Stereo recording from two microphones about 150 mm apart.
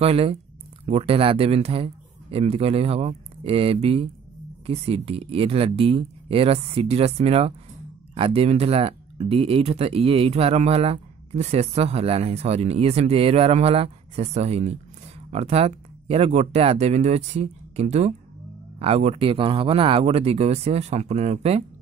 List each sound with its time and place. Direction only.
0.0 s speech: 40° right (ahead or behind)